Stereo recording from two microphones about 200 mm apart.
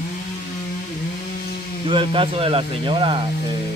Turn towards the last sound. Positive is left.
turn(degrees=-25)  # may be behind; listen again after turning